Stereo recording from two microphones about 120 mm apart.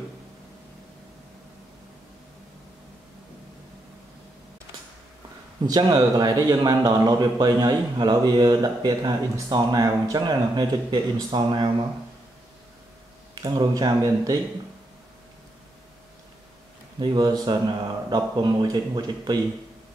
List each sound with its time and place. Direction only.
5.7 s a man's voice: 35° right (ahead or behind)
13.4 s speech: 30° right (ahead or behind)
17.0 s a man's voice: 35° right (ahead or behind)